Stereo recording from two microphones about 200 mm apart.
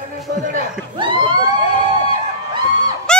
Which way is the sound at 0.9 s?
25° right (ahead or behind).